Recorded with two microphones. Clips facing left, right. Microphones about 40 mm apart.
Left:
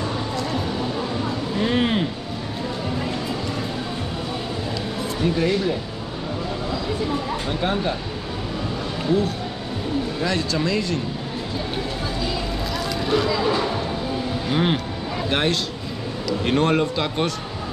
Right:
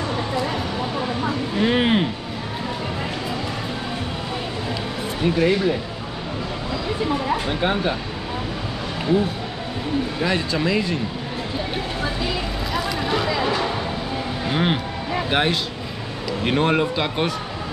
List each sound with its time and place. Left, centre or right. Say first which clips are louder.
1.6 s music: right 2 dB; centre
5.2 s speech: right 3 dB; centre
7.2 s speech: right 2 dB; right
10.2 s speech: right 1 dB; centre
12.7 s a sound: even; centre
14.5 s speech: even; centre